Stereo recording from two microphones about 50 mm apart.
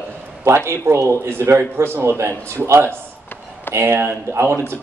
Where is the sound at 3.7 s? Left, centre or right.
Right.